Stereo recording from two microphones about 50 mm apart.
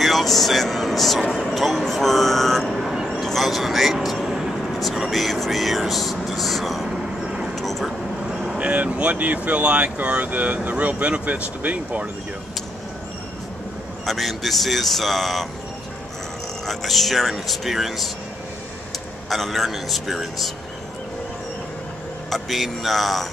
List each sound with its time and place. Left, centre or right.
0.0 s speech: centre
1.5 s vehicle: centre
3.3 s a sound: centre
4.7 s speech: centre
7.2 s a sound: right
7.5 s vehicle: centre
8.3 s vehicle: centre
8.5 s speech: right
14.0 s speech: centre
16.6 s speech: centre
19.2 s speech: centre
22.3 s speech: centre